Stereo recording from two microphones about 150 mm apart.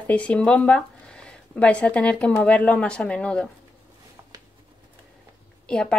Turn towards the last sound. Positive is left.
turn(degrees=5)  # may be behind; listen again after turning